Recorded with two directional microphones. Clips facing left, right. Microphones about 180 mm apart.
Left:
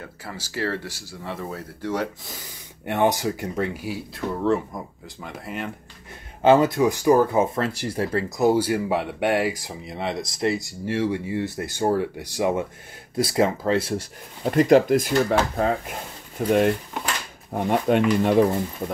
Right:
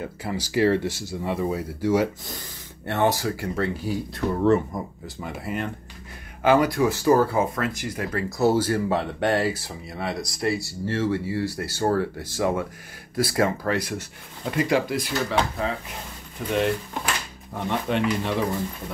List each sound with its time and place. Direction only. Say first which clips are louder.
0.0 s speech: right 7 dB; 15° right (ahead or behind)
2.3 s speech: right 2 dB; 15° left (ahead or behind); by 5.7 s centre (ahead or behind)
6.4 s speech: left 3 dB; 25° left (ahead or behind)
8.4 s speech: left 1 dB; 15° left (ahead or behind); by 18.3 s 50° left (ahead or behind)